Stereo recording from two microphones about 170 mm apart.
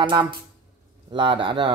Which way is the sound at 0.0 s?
25° right (ahead or behind).